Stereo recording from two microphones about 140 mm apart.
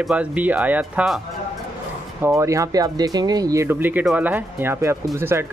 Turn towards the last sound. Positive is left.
turn(degrees=-20)  # may be behind; listen again after turning